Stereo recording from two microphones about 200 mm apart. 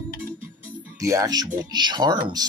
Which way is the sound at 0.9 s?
15° right (ahead or behind).